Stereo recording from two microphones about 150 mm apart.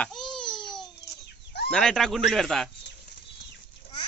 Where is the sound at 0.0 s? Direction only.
5° left (ahead or behind).